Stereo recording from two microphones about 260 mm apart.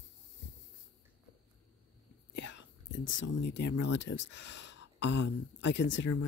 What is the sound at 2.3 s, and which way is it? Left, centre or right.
Whispering, left.